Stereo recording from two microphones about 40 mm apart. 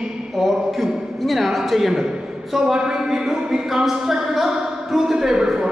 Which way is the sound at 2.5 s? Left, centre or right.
Centre.